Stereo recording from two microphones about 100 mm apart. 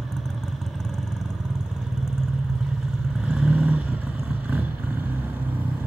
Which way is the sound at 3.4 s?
10° right (ahead or behind).